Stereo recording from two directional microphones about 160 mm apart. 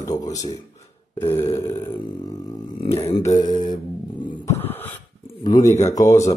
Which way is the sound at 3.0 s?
40° left (ahead or behind).